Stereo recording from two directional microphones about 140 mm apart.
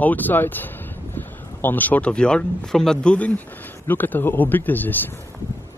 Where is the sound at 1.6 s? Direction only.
10° left (ahead or behind).